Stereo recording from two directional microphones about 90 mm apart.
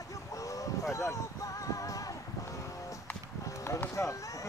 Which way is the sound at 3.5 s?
35° left (ahead or behind).